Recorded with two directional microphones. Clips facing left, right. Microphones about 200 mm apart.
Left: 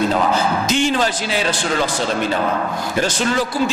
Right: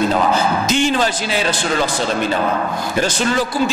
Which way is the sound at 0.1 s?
25° right (ahead or behind).